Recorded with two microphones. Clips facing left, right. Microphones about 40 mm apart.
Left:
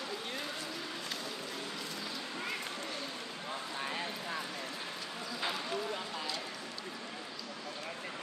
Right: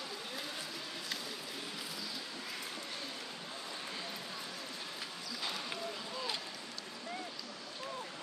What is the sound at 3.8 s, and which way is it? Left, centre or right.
Clip-clop, left.